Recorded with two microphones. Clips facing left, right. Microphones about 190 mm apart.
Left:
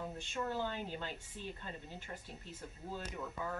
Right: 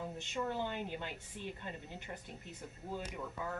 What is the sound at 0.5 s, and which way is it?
Speech, 20° right (ahead or behind).